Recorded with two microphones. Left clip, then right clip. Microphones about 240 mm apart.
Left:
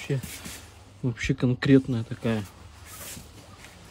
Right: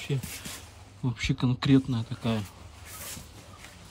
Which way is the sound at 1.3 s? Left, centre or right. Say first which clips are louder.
Left 4 dB; centre.